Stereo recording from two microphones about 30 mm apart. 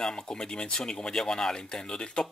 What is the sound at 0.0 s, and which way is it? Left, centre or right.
Speech, left.